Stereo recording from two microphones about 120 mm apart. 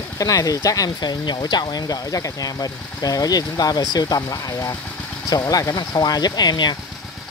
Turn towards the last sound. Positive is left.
turn(degrees=35)  # may be behind; listen again after turning